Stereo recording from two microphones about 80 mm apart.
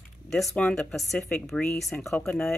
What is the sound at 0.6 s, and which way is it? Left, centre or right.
A woman's voice, centre.